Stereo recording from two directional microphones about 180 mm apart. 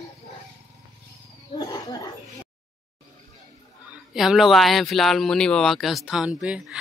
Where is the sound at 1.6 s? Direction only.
20° left (ahead or behind).